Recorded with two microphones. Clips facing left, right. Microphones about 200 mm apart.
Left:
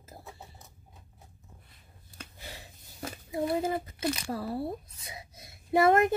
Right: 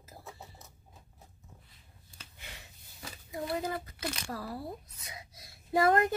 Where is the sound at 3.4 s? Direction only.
25° left (ahead or behind).